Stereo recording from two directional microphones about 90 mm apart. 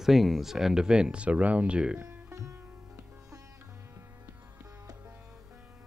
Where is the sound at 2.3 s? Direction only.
35° right (ahead or behind).